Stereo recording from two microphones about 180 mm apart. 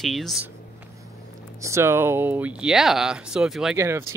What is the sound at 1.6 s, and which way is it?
Speech, 15° right (ahead or behind).